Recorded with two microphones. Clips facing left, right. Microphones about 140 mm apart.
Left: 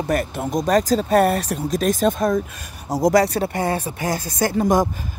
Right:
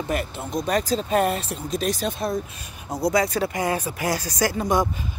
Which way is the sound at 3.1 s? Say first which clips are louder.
Left 4 dB; 65° left (ahead or behind).